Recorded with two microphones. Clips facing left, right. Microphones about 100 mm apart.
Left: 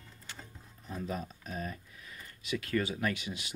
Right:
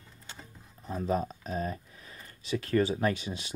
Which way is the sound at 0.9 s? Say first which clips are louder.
Right 8 dB; 35° right (ahead or behind).